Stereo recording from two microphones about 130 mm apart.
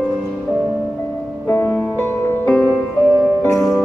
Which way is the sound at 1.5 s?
15° left (ahead or behind).